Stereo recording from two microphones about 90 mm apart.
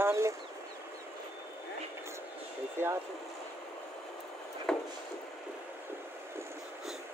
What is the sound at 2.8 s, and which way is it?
Speech, 30° right (ahead or behind).